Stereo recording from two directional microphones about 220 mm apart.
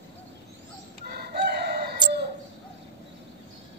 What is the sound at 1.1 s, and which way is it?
Chicken, 50° right (ahead or behind).